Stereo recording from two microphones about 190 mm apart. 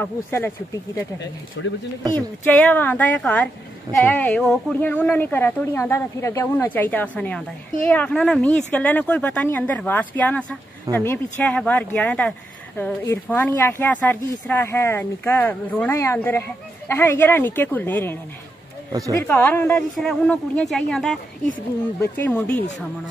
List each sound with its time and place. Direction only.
0.0 s a woman's voice: 10° left (ahead or behind)
1.6 s speech: 80° left
2.1 s a woman's voice: 10° left (ahead or behind)
18.9 s speech: 15° right (ahead or behind)
19.2 s a woman's voice: 10° left (ahead or behind)